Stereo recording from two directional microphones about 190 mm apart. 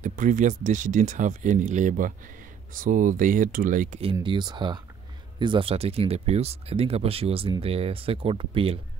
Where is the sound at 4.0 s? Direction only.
25° right (ahead or behind).